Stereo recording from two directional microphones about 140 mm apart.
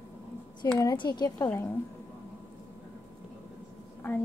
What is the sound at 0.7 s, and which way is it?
Speech, 30° left (ahead or behind).